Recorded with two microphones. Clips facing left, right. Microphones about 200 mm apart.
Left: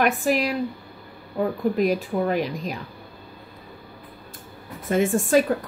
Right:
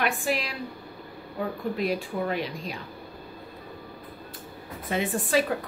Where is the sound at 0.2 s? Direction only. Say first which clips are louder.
Left 7 dB; 40° left (ahead or behind).